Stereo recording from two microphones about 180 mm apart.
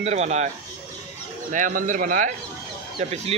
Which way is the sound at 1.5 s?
45° right (ahead or behind).